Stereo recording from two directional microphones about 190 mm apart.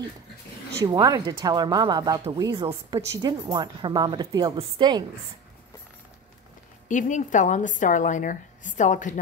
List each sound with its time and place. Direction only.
0.7 s a woman's voice: 20° right (ahead or behind)
6.9 s a woman's voice: 40° left (ahead or behind)